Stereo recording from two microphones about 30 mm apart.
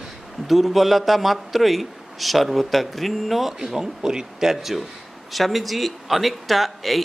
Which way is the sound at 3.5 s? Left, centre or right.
Right.